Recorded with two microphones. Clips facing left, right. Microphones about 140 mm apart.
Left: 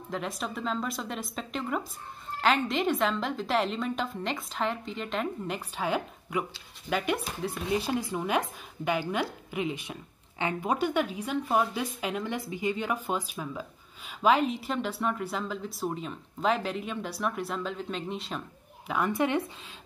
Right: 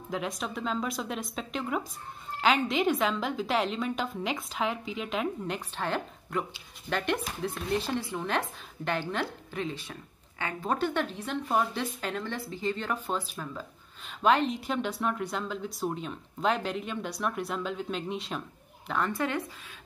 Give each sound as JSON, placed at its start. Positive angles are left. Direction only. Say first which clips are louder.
{"t": 0.1, "sound": "speech", "louder": "even", "side_deg": 0}
{"t": 18.9, "sound": "speech", "louder": "left 1 dB", "side_deg": 10}
{"t": 19.1, "sound": "speech", "louder": "left 4 dB", "side_deg": 20}